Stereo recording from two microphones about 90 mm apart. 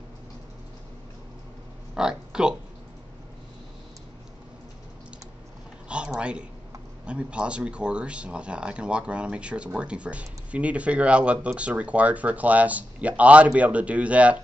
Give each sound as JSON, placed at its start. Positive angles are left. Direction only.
{"t": 2.0, "sound": "speech", "side_deg": -10}
{"t": 5.9, "sound": "a sound", "side_deg": -10}
{"t": 7.1, "sound": "speech", "side_deg": -10}